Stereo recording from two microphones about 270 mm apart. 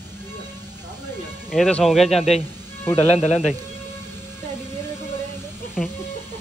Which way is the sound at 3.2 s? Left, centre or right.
Left.